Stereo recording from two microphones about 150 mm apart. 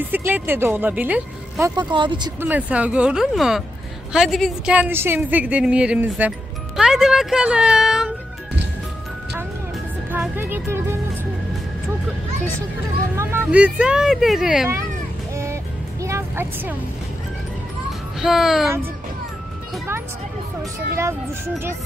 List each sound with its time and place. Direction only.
0.0 s speech: 10° right (ahead or behind)
1.8 s speech: 30° right (ahead or behind)
2.4 s speech: 10° right (ahead or behind)
4.7 s speech: 15° right (ahead or behind)
10.1 s speech: 15° right (ahead or behind)
13.1 s speech: 15° right (ahead or behind)
15.3 s music: 20° right (ahead or behind)
18.2 s speech: centre (ahead or behind)